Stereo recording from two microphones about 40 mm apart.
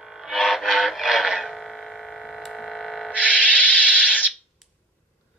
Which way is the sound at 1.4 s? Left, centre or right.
Centre.